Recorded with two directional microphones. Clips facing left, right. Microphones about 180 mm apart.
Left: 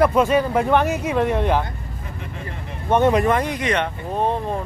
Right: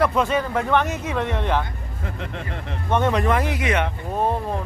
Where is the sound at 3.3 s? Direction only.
5° right (ahead or behind).